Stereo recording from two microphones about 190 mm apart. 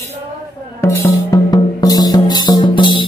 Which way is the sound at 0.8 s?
15° left (ahead or behind).